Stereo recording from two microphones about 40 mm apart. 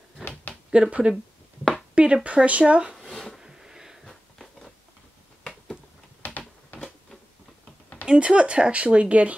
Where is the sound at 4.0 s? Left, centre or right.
Centre.